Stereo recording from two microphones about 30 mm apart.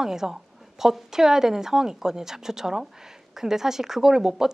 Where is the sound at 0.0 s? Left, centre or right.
Centre.